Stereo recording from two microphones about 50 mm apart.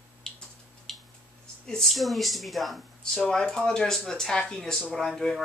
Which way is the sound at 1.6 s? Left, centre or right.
Centre.